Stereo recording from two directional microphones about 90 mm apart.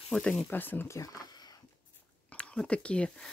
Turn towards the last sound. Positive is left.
turn(degrees=10)  # may be behind; listen again after turning